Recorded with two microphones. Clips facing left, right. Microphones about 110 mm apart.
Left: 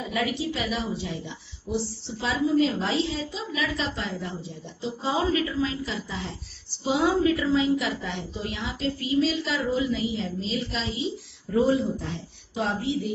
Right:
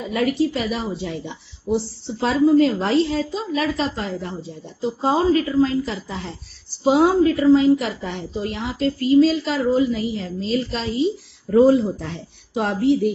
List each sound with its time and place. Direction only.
0.1 s a woman's voice: 50° right (ahead or behind)